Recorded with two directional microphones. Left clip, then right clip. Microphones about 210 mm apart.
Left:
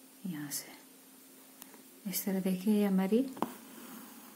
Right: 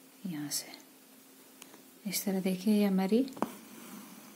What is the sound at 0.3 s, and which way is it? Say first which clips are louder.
Whispering: right 4 dB; 15° right (ahead or behind).